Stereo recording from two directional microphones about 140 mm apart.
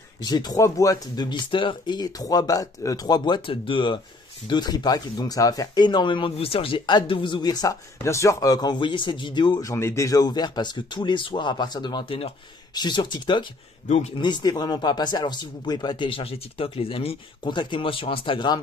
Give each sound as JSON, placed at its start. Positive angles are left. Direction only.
{"t": 0.2, "sound": "speech", "side_deg": 30}
{"t": 13.8, "sound": "speech", "side_deg": 55}
{"t": 14.1, "sound": "speech", "side_deg": 30}